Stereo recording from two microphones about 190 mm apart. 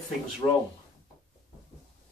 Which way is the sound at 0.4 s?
20° left (ahead or behind).